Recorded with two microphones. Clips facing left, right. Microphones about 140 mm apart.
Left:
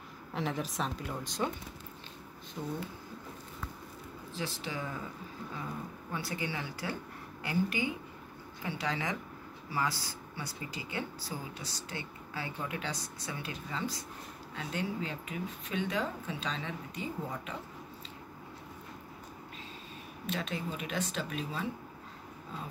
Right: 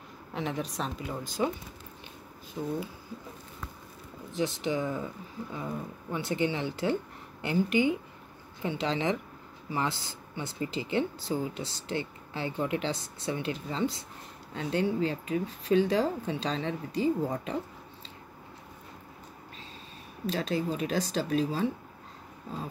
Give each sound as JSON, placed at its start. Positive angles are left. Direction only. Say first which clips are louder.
{"t": 0.3, "sound": "speech", "louder": "right 2 dB", "side_deg": 0}
{"t": 2.6, "sound": "speech", "louder": "right 5 dB", "side_deg": -10}
{"t": 4.3, "sound": "speech", "louder": "right 9 dB", "side_deg": -20}
{"t": 6.1, "sound": "speech", "louder": "right 8 dB", "side_deg": -20}
{"t": 20.2, "sound": "speech", "louder": "right 7 dB", "side_deg": -35}